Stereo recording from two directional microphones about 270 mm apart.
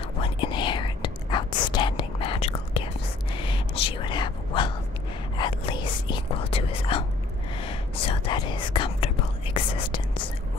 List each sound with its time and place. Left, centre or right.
0.2 s whispering: centre